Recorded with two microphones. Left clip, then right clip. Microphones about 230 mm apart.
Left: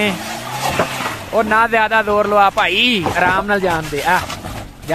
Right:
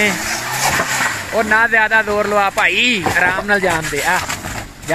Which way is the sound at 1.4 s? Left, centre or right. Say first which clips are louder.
Even; centre.